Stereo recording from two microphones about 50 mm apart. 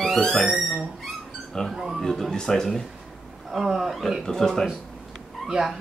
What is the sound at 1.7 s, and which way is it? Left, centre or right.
Speech, centre.